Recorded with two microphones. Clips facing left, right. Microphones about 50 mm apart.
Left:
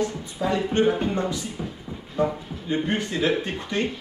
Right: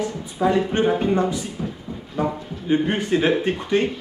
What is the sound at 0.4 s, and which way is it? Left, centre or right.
A man's voice, right.